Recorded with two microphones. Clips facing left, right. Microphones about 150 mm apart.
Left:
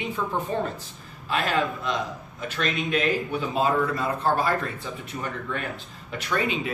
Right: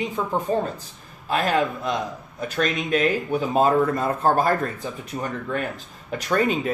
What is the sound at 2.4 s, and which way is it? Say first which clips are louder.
Speech: right 3 dB; 45° right (ahead or behind).